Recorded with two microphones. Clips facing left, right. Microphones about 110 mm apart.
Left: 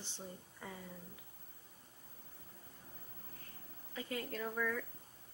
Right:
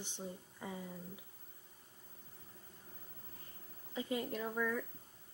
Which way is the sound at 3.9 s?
20° right (ahead or behind).